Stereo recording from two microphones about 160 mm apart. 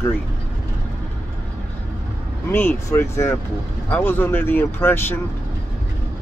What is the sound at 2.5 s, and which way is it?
Speech, 15° left (ahead or behind).